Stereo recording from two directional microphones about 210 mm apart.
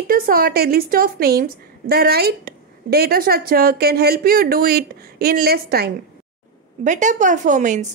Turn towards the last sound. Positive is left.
turn(degrees=-35)  # may be behind; listen again after turning